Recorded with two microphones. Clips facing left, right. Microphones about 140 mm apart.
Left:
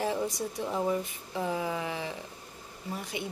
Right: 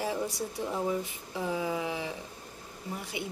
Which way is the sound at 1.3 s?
5° left (ahead or behind).